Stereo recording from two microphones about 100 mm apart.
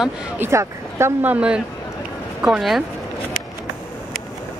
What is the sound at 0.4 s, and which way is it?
Speech, 30° right (ahead or behind).